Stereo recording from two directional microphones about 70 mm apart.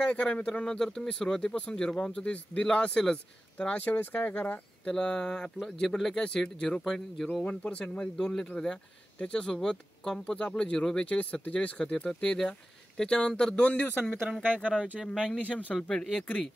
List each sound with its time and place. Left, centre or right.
0.0 s speech: centre
7.4 s speech: centre
14.4 s speech: right
14.7 s speech: centre
15.0 s speech: centre